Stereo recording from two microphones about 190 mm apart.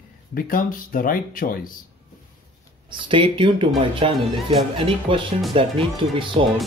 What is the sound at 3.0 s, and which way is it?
Speech, 25° right (ahead or behind).